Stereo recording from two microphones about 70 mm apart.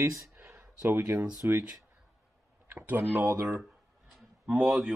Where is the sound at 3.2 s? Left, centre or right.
Right.